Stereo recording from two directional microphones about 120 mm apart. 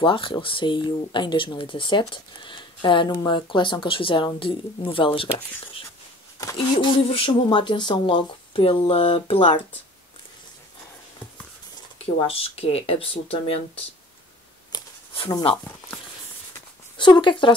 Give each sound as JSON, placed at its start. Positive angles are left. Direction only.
{"t": 0.0, "sound": "speech", "side_deg": 45}
{"t": 6.4, "sound": "speech", "side_deg": 40}
{"t": 12.0, "sound": "speech", "side_deg": 50}
{"t": 16.9, "sound": "speech", "side_deg": 40}